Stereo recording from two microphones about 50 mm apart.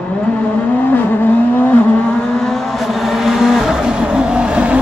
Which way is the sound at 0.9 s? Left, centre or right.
Left.